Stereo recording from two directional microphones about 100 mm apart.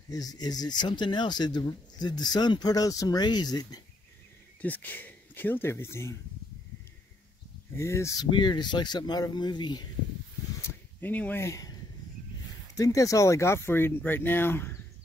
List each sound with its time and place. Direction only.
0.1 s speech: 40° left (ahead or behind)
4.6 s speech: 15° left (ahead or behind)
7.7 s speech: 25° left (ahead or behind)
8.2 s speech: 50° left (ahead or behind)
10.6 s a sound: 20° left (ahead or behind)
11.4 s speech: 35° left (ahead or behind)
12.7 s speech: 35° left (ahead or behind)